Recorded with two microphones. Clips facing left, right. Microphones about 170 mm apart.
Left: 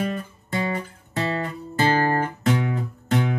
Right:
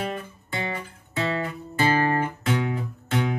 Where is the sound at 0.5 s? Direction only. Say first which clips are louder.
Left 5 dB; 40° left (ahead or behind).